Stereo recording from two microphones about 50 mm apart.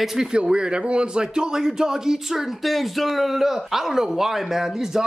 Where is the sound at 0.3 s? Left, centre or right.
Centre.